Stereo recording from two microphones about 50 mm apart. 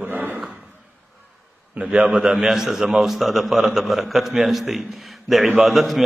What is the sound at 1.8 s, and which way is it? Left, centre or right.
A man's voice, centre.